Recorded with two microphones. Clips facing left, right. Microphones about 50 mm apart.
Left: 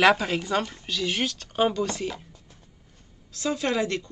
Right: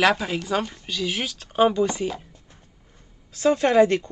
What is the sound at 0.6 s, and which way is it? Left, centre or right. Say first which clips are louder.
Speech: right 2 dB; centre.